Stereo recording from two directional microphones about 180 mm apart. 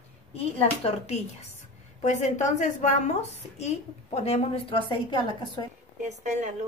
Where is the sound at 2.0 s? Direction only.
40° left (ahead or behind); by 5.6 s 25° left (ahead or behind).